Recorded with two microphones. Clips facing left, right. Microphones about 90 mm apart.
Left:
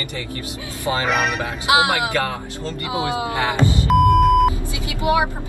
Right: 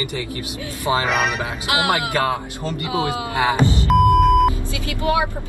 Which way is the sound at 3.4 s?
20° right (ahead or behind).